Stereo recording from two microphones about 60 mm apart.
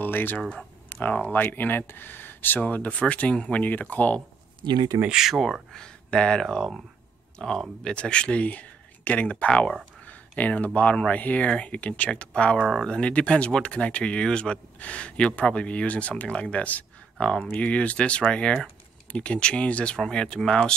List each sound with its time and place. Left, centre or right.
0.0 s a sound: left
0.4 s speech: centre
1.0 s speech: left
5.1 s speech: centre
6.4 s speech: centre